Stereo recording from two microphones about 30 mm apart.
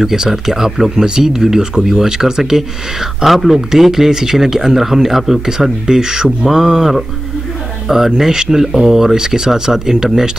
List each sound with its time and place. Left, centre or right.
0.0 s speech: centre
2.5 s speech: centre
5.9 s speech: right
8.3 s speech: right